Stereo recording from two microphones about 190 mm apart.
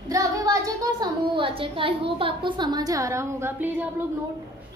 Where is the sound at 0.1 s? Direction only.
20° right (ahead or behind).